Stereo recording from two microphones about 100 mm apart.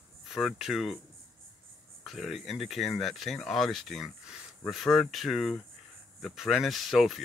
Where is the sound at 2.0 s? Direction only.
Centre (ahead or behind).